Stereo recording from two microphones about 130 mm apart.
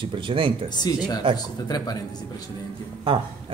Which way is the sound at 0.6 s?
35° left (ahead or behind).